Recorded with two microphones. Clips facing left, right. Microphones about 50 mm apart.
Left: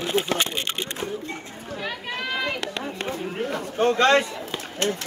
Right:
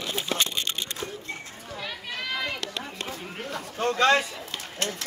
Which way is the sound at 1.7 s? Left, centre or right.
Left.